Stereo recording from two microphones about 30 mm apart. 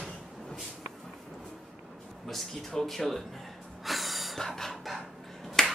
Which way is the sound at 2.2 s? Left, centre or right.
Centre.